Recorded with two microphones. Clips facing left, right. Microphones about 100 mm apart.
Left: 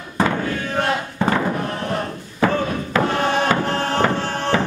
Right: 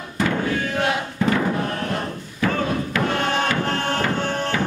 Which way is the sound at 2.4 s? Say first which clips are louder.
Left 3 dB; 35° left (ahead or behind).